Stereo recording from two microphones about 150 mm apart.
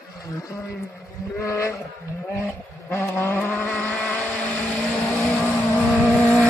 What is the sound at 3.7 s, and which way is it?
Vehicle, 5° left (ahead or behind).